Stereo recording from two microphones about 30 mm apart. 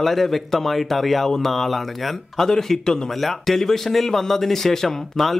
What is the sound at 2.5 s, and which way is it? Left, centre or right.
Speech, centre.